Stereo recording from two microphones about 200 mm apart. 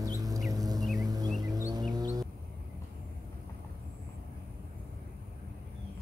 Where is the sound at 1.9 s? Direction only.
20° right (ahead or behind).